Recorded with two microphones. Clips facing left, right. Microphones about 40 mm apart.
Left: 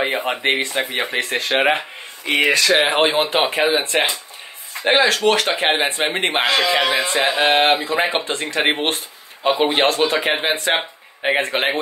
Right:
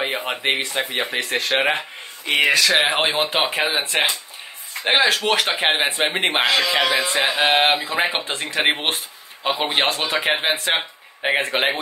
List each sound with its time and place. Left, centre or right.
0.0 s speech: centre
6.4 s speech: centre